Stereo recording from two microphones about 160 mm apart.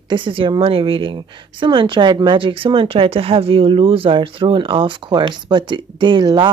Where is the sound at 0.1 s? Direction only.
30° right (ahead or behind).